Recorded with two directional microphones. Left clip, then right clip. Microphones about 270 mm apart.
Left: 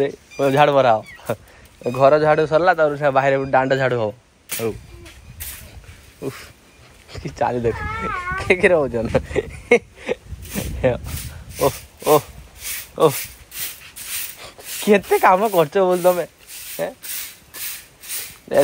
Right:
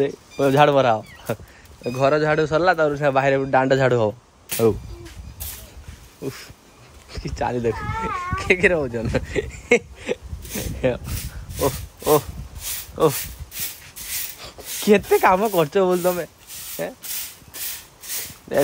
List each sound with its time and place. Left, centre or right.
0.0 s a man's voice: centre
7.3 s speech: centre
14.4 s speech: centre
18.5 s speech: centre